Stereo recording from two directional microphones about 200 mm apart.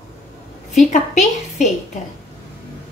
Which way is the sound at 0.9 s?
35° left (ahead or behind).